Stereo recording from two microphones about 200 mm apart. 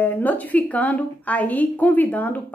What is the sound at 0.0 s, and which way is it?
A woman's voice, 10° left (ahead or behind).